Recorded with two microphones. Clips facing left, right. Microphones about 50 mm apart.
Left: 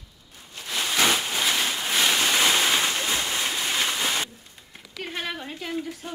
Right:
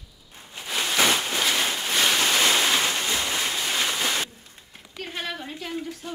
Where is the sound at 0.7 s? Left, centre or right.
Centre.